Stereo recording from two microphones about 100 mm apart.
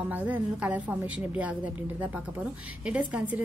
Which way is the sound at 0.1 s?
15° right (ahead or behind).